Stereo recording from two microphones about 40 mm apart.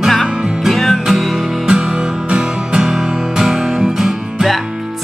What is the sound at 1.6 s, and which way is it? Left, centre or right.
Music, right.